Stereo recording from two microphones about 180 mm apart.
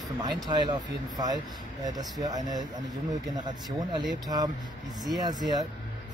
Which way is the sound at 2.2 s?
20° right (ahead or behind).